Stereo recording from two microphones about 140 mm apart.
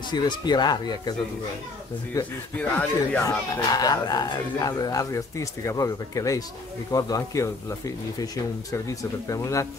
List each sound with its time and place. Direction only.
0.1 s speech: 30° left (ahead or behind)
2.1 s speech: 25° left (ahead or behind)
2.5 s speech: 10° left (ahead or behind)
3.2 s speech: 25° left (ahead or behind)
9.3 s speech: 25° left (ahead or behind)